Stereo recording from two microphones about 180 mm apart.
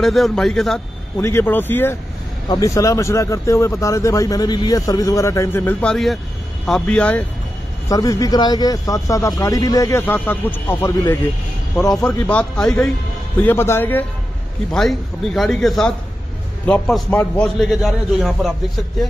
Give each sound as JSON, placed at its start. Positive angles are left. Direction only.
{"t": 0.0, "sound": "a man's voice", "side_deg": 0}
{"t": 1.1, "sound": "speech", "side_deg": 15}
{"t": 7.9, "sound": "a man's voice", "side_deg": 20}
{"t": 14.7, "sound": "a man's voice", "side_deg": 0}